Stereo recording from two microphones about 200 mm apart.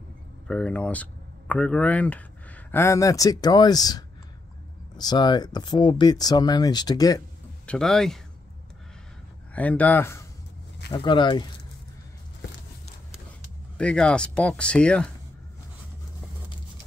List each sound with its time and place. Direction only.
0.5 s speech: 5° left (ahead or behind)
7.6 s speech: 5° left (ahead or behind)
9.5 s speech: 5° left (ahead or behind)
10.9 s speech: 25° left (ahead or behind)
13.7 s speech: 5° left (ahead or behind)